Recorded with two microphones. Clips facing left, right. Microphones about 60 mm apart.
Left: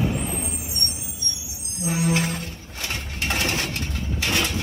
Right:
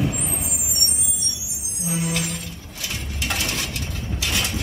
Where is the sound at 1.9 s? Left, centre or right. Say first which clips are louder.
Left 3 dB; left.